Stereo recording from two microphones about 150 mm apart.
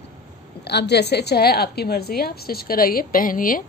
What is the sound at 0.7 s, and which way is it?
A woman's voice, 90° left.